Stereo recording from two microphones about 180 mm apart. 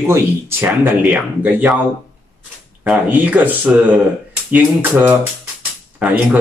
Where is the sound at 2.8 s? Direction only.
10° right (ahead or behind).